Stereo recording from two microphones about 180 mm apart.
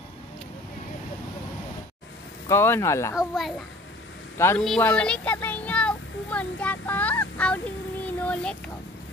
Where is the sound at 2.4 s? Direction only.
15° left (ahead or behind).